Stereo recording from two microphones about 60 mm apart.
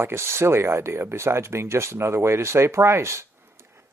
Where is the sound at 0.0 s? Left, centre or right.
Right.